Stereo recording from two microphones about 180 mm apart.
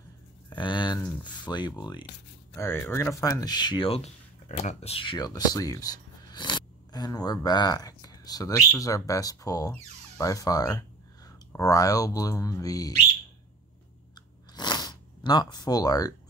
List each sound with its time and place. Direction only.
0.5 s speech: 25° left (ahead or behind)
2.5 s speech: 15° left (ahead or behind)
14.1 s chewing: 25° left (ahead or behind)